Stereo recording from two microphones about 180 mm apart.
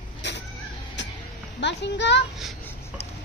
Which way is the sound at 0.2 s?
75° left (ahead or behind).